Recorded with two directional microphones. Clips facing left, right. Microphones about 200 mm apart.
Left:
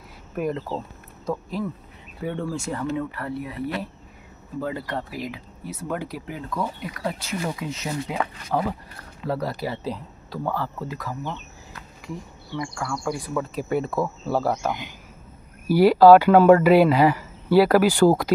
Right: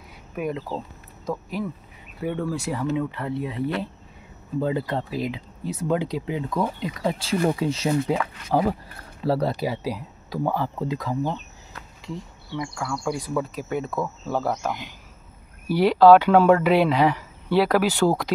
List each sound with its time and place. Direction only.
0.4 s speech: centre (ahead or behind); by 9.6 s 30° right (ahead or behind)
9.6 s speech: 10° right (ahead or behind)
12.5 s speech: 5° right (ahead or behind); by 14.5 s 10° left (ahead or behind)
14.5 s speech: centre (ahead or behind)